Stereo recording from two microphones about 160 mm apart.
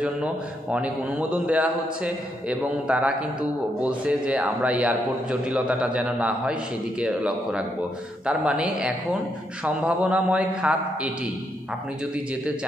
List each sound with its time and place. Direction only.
0.0 s a man's voice: 5° right (ahead or behind)